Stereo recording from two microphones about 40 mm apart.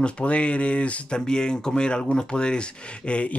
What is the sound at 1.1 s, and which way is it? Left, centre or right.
Speech, centre.